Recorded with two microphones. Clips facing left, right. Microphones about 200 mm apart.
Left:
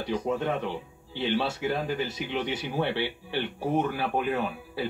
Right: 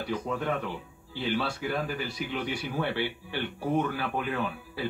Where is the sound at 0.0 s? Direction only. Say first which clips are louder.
Left 3 dB; 25° left (ahead or behind).